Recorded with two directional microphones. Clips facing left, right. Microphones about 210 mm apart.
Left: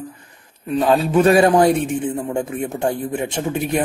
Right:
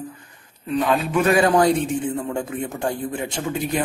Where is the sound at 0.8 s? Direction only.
30° left (ahead or behind).